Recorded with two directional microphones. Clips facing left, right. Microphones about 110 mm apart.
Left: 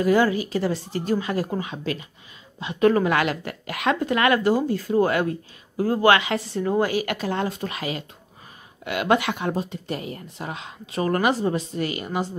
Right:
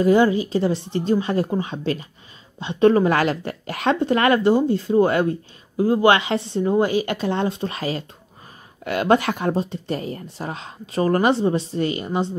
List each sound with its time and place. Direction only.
0.0 s a woman's voice: 25° right (ahead or behind)